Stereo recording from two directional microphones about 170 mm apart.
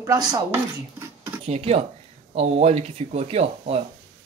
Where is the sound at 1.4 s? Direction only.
40° right (ahead or behind).